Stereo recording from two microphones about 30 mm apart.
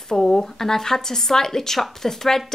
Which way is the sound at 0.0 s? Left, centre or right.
Centre.